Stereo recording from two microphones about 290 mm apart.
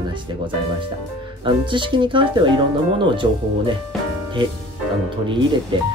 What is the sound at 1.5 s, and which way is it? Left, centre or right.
Speech, centre.